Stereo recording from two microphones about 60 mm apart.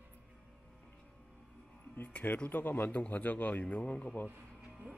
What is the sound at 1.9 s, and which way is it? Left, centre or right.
Speech, left.